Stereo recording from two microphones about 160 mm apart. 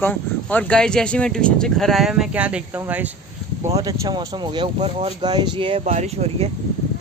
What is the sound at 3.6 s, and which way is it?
Speech, 20° right (ahead or behind).